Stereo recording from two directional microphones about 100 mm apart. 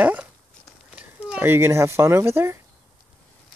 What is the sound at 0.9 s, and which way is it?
Speech, 15° right (ahead or behind).